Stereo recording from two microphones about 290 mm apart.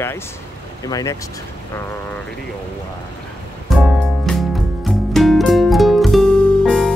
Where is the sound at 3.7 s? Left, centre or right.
Centre.